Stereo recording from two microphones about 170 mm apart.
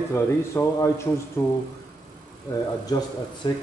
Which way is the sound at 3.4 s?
30° left (ahead or behind).